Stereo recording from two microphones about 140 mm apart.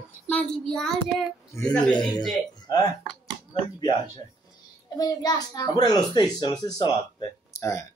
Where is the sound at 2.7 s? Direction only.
30° left (ahead or behind).